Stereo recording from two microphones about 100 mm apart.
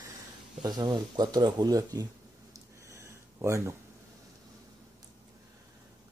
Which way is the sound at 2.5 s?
30° right (ahead or behind).